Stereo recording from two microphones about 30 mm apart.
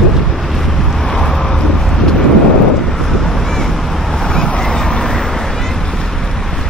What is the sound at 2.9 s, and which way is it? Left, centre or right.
Vehicle, centre.